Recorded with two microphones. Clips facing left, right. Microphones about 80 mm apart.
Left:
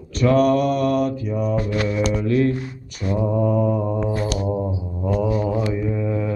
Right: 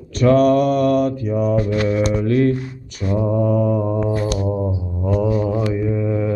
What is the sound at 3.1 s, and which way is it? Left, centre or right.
Mantra, centre.